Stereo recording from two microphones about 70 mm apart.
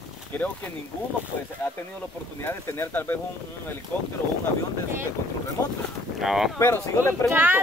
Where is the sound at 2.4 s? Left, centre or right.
Left.